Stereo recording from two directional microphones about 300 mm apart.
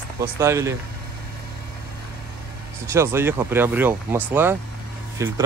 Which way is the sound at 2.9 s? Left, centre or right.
Centre.